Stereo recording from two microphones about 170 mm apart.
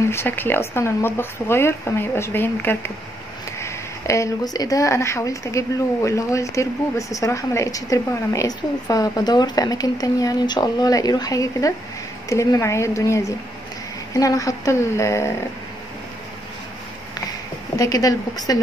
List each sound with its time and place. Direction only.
0.1 s speech: 15° left (ahead or behind)
17.7 s speech: 20° left (ahead or behind)